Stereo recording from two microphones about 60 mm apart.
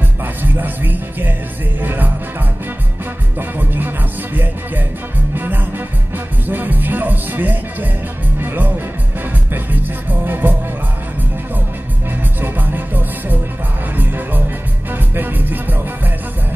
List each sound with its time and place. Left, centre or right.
0.2 s music: right
3.3 s music: right
12.4 s music: right